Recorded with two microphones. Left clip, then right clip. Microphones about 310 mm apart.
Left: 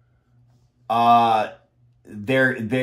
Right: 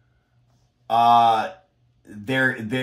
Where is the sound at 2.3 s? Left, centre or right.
Centre.